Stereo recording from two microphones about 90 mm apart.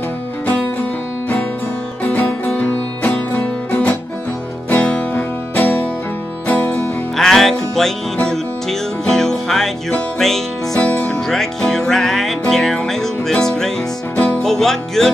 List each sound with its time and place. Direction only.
2.1 s music: 20° left (ahead or behind)
7.2 s music: 5° left (ahead or behind)
10.8 s music: 15° left (ahead or behind)
11.1 s music: 5° left (ahead or behind)